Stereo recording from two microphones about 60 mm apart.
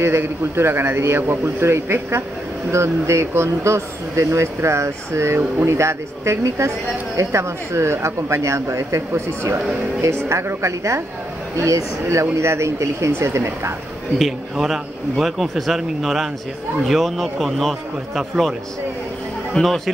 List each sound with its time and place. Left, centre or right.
0.0 s speech: right
14.1 s a man's voice: centre
19.5 s a man's voice: centre